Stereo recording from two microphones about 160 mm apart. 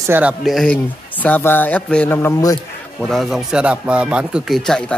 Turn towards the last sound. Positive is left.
turn(degrees=0)  # may be behind; listen again after turning